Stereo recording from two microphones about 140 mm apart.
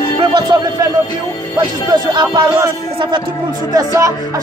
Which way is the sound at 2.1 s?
30° right (ahead or behind).